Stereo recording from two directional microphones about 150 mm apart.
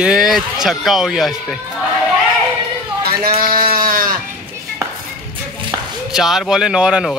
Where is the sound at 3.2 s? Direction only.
70° right (ahead or behind).